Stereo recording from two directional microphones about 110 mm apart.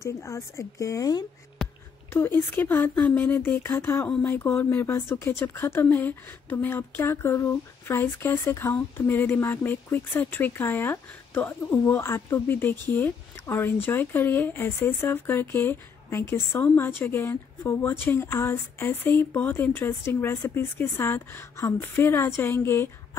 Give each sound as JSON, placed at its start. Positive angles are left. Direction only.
{"t": 0.0, "sound": "speech", "side_deg": 30}
{"t": 2.5, "sound": "speech", "side_deg": 15}